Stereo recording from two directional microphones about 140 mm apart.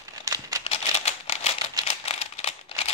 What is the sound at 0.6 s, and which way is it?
Typewriter, 50° left (ahead or behind).